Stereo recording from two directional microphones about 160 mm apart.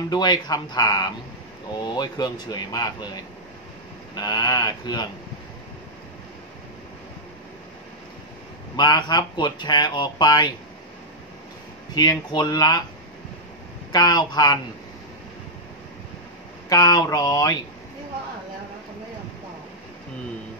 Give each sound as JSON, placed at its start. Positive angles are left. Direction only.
{"t": 0.1, "sound": "speech", "side_deg": 25}
{"t": 4.1, "sound": "speech", "side_deg": 25}
{"t": 8.7, "sound": "speech", "side_deg": 30}
{"t": 11.9, "sound": "speech", "side_deg": 25}
{"t": 13.9, "sound": "speech", "side_deg": 25}
{"t": 16.6, "sound": "speech", "side_deg": 25}